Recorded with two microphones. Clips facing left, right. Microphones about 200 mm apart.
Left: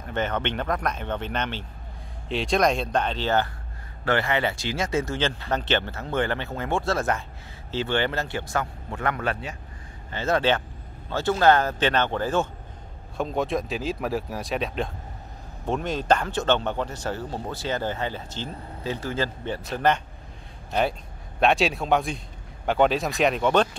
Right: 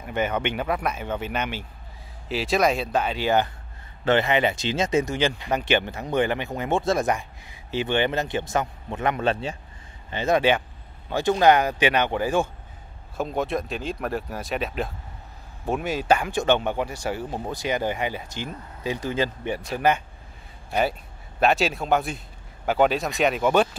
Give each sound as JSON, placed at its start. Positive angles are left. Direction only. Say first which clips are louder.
{"t": 0.0, "sound": "speech", "louder": "right 2 dB", "side_deg": -10}
{"t": 10.1, "sound": "speech", "louder": "right 2 dB", "side_deg": -15}
{"t": 13.2, "sound": "speech", "louder": "even", "side_deg": 0}
{"t": 21.4, "sound": "speech", "louder": "even", "side_deg": 0}